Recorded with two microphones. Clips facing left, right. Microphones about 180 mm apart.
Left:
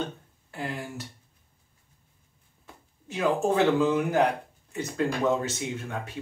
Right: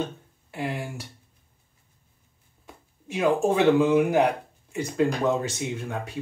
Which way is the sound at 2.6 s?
15° right (ahead or behind).